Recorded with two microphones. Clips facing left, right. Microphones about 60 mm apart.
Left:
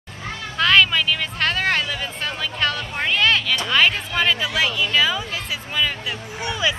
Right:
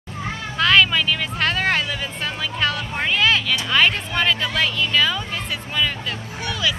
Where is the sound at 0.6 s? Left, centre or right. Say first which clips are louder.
Even; centre.